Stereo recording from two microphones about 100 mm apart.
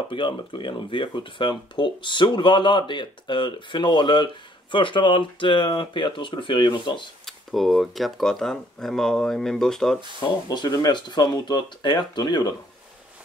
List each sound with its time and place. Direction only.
0.1 s speech: 55° left (ahead or behind)
7.2 s speech: centre (ahead or behind)
10.2 s speech: 45° left (ahead or behind)